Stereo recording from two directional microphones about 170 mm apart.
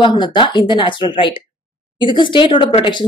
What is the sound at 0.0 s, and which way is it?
A woman's voice, 25° left (ahead or behind).